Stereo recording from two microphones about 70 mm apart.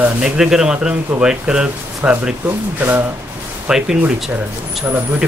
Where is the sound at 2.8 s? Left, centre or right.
Right.